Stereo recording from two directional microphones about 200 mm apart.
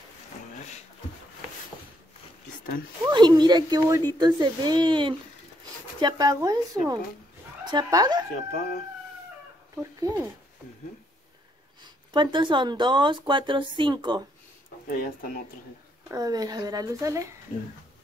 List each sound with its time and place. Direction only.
3.1 s speech: 20° right (ahead or behind)
9.8 s speech: 15° right (ahead or behind)
11.8 s speech: 25° right (ahead or behind)
14.9 s speech: 45° left (ahead or behind)
16.1 s speech: 15° right (ahead or behind)